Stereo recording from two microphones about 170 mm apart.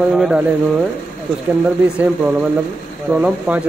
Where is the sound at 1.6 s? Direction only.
5° right (ahead or behind).